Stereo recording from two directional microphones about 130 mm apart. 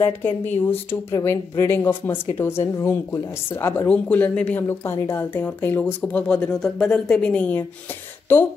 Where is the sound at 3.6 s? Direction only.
10° left (ahead or behind).